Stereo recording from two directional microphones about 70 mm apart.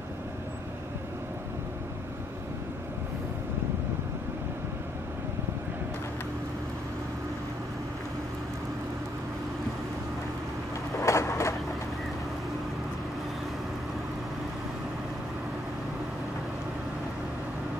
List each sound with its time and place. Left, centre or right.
11.0 s vehicle: left